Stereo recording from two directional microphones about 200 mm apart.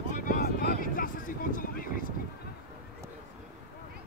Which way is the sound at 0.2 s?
45° left (ahead or behind).